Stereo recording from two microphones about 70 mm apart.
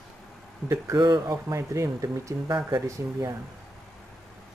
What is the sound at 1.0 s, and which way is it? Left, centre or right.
Speech, right.